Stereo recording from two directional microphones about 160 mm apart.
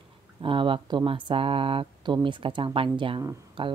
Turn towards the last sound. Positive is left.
turn(degrees=-30)  # may be behind; listen again after turning